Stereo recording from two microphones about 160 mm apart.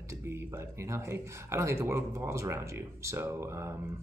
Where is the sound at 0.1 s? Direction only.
15° right (ahead or behind).